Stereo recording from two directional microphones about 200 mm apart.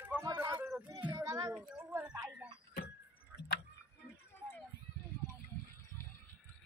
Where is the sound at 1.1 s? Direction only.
20° right (ahead or behind).